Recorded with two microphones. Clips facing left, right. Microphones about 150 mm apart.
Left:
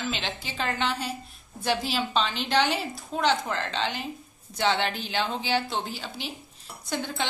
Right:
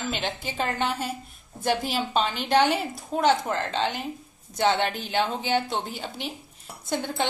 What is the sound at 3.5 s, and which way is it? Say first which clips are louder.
A woman's voice: right 3 dB; 50° right (ahead or behind).